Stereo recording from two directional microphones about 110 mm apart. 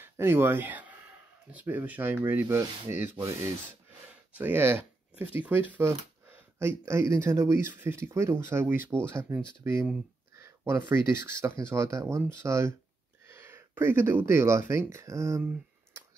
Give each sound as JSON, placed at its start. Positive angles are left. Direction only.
{"t": 0.0, "sound": "speech", "side_deg": -20}
{"t": 4.3, "sound": "speech", "side_deg": -15}
{"t": 10.3, "sound": "a sound", "side_deg": -25}
{"t": 11.1, "sound": "speech", "side_deg": -25}